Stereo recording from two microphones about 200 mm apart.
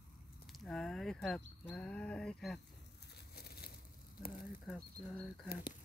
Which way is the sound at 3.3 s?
50° left (ahead or behind).